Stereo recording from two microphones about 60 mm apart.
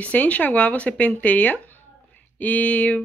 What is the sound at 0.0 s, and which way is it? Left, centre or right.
Speech, left.